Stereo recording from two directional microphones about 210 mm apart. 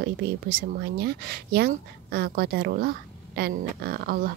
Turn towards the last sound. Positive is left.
turn(degrees=-45)  # may be behind; listen again after turning